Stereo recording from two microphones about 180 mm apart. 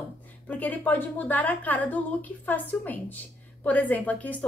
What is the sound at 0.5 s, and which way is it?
A woman's voice, 10° left (ahead or behind).